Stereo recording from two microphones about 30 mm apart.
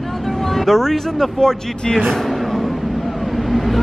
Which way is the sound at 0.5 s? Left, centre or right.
Centre.